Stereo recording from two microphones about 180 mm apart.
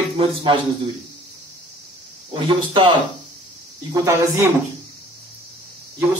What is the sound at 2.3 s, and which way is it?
Speech, 30° right (ahead or behind).